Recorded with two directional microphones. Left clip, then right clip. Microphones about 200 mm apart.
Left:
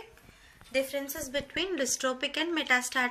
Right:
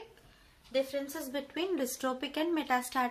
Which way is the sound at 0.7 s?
30° right (ahead or behind).